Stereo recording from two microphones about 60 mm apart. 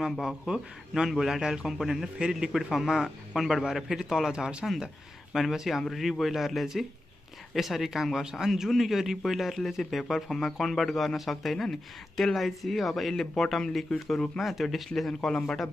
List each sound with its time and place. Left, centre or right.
0.2 s a man's voice: centre
5.3 s a man's voice: centre